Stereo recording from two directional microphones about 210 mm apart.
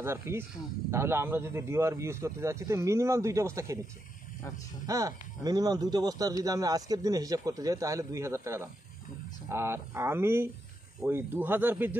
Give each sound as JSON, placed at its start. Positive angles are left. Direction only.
{"t": 0.0, "sound": "speech", "side_deg": -10}
{"t": 4.8, "sound": "speech", "side_deg": -15}